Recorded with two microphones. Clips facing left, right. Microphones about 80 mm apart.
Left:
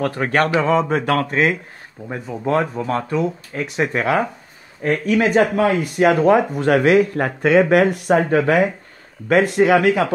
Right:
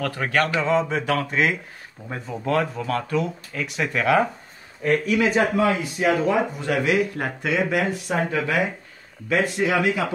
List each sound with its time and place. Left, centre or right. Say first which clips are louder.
0.0 s speech: left 4 dB; left
0.6 s speech: left 4 dB; left
2.0 s speech: left 4 dB; centre
4.8 s speech: left 3 dB; left